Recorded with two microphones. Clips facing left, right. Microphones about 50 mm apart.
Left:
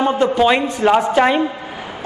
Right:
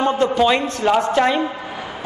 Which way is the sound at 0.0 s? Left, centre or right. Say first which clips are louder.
Left 2 dB; centre.